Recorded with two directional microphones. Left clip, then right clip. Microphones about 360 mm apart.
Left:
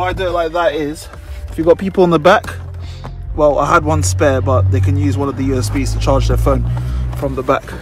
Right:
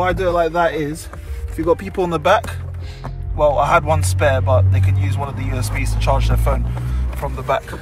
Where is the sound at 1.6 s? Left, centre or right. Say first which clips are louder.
Left 7 dB; centre.